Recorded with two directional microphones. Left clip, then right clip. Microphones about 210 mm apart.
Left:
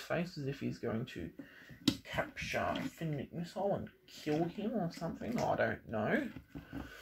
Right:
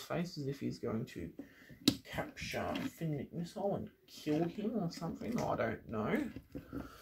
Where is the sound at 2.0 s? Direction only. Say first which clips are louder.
Left 4 dB; 20° right (ahead or behind).